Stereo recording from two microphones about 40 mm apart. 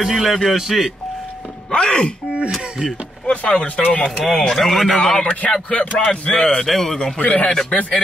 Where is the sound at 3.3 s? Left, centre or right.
Left.